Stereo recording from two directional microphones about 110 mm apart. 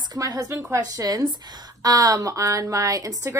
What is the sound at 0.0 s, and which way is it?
A woman's voice, 35° right (ahead or behind).